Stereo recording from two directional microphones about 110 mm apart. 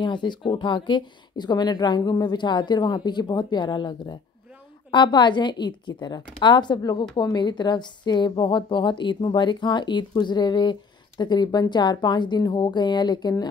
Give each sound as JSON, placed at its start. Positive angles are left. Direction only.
{"t": 0.0, "sound": "a woman's voice", "side_deg": 45}